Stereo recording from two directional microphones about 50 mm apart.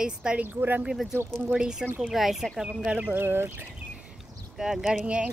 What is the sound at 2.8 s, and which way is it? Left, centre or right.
Speech, right.